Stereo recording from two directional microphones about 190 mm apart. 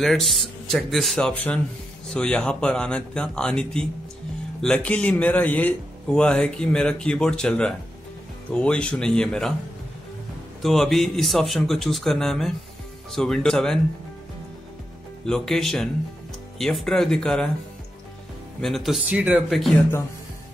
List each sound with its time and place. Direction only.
0.0 s speech: centre (ahead or behind)
10.6 s speech: centre (ahead or behind)
15.2 s speech: centre (ahead or behind)
18.6 s speech: centre (ahead or behind)